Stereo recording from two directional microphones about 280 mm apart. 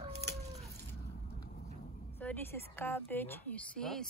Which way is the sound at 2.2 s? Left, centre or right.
Centre.